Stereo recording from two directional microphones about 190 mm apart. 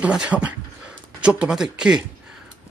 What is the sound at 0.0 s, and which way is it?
Speech, 5° right (ahead or behind).